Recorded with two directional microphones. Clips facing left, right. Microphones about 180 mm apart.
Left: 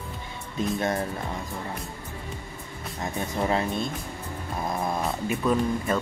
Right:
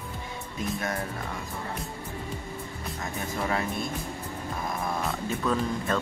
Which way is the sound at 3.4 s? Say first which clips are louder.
Left 4 dB; 25° left (ahead or behind).